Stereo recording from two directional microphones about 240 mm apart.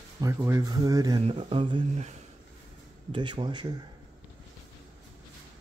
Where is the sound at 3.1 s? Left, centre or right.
Centre.